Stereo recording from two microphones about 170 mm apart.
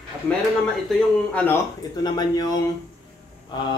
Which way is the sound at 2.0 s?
25° left (ahead or behind).